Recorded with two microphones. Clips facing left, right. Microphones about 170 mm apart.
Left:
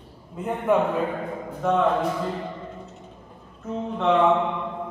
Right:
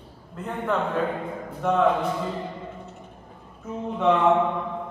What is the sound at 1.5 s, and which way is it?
Speech, centre (ahead or behind).